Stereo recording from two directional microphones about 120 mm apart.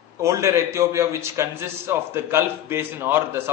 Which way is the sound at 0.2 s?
25° right (ahead or behind).